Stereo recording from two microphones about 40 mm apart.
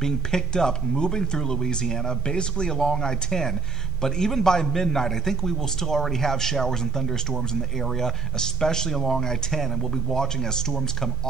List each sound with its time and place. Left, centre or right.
0.0 s speech: centre
10.7 s speech: centre